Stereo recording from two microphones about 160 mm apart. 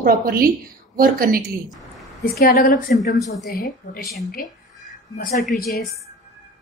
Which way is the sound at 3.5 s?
75° left (ahead or behind).